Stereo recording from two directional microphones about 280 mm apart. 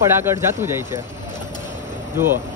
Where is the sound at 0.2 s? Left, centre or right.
Centre.